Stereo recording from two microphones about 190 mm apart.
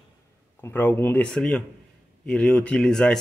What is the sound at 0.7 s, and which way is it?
Speech, 10° left (ahead or behind).